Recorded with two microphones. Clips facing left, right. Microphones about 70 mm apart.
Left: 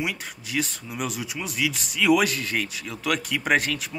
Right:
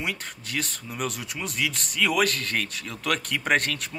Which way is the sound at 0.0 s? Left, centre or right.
Centre.